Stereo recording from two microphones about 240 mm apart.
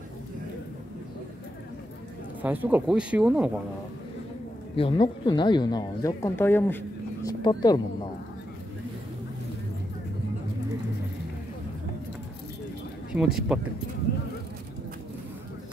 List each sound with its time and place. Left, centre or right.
2.4 s speech: centre
4.7 s speech: left
13.1 s speech: centre